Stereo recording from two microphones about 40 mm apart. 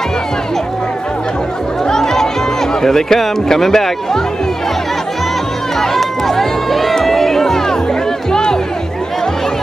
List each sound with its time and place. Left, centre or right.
1.9 s music: centre
2.8 s speech: centre
5.8 s run: centre
7.1 s music: centre